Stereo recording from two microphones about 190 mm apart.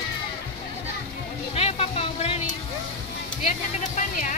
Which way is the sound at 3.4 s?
40° left (ahead or behind).